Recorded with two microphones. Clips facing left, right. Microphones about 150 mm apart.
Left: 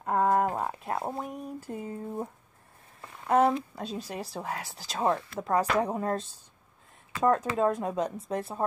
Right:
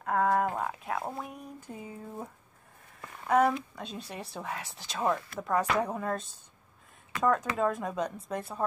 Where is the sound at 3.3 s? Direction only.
30° left (ahead or behind).